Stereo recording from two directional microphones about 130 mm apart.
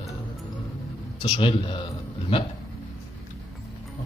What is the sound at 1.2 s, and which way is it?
Speech, 40° left (ahead or behind).